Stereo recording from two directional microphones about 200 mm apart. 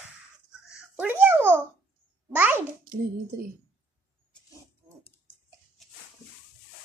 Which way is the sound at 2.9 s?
45° right (ahead or behind).